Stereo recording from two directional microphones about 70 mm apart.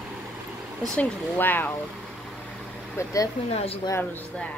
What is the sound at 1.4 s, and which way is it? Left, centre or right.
Speech, left.